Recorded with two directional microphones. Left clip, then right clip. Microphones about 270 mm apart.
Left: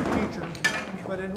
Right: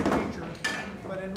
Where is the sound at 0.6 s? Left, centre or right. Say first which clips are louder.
Left 5 dB; left.